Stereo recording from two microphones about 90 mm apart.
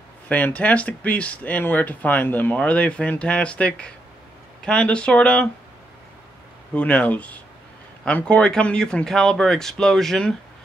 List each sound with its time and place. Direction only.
0.3 s speech: 15° left (ahead or behind)
6.7 s speech: 15° left (ahead or behind)